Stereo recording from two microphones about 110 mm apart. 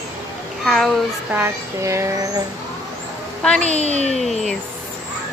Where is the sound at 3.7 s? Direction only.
75° left (ahead or behind).